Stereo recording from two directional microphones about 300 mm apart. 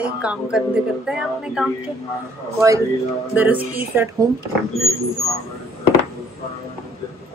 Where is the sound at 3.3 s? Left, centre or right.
Centre.